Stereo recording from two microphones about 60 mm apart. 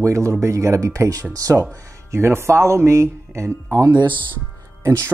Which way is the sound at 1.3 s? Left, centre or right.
Right.